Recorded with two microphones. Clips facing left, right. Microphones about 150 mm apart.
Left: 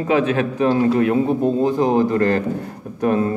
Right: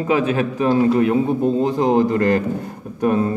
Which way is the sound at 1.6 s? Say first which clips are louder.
Right 1 dB; 20° right (ahead or behind).